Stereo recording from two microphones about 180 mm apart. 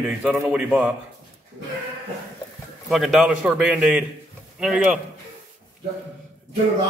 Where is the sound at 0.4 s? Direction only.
5° right (ahead or behind).